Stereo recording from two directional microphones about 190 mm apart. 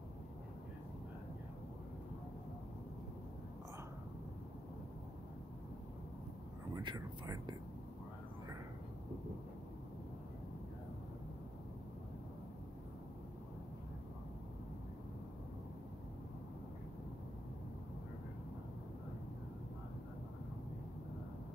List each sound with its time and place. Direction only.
6.7 s speech: 25° right (ahead or behind)